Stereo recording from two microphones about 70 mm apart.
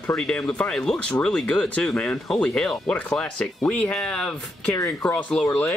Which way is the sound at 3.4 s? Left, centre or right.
Left.